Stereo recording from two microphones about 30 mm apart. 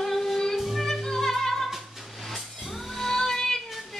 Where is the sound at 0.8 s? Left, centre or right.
Centre.